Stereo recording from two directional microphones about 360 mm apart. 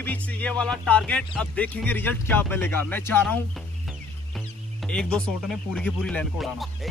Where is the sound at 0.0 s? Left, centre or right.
Centre.